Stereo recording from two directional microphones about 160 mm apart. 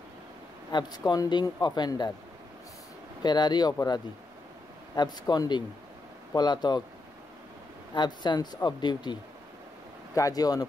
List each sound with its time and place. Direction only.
0.7 s speech: 25° left (ahead or behind)
3.2 s speech: 25° left (ahead or behind)
4.9 s speech: 25° left (ahead or behind)
7.9 s speech: 30° left (ahead or behind)